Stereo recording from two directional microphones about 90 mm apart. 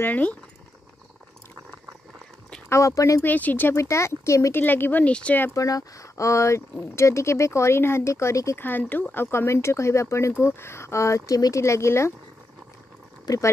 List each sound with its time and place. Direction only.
0.0 s speech: 15° left (ahead or behind)
2.7 s speech: 35° left (ahead or behind)
3.2 s speech: 20° left (ahead or behind)
3.8 s speech: 35° left (ahead or behind); by 5.5 s 15° left (ahead or behind)
5.5 s speech: 40° left (ahead or behind)
8.5 s speech: 20° left (ahead or behind)
13.2 s speech: 40° left (ahead or behind)